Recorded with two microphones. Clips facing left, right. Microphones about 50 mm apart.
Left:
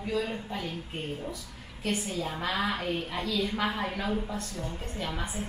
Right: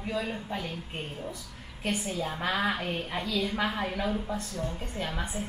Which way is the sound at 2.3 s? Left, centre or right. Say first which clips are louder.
Right 2 dB; centre.